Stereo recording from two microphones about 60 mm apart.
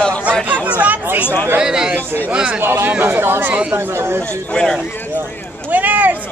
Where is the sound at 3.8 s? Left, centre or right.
Right.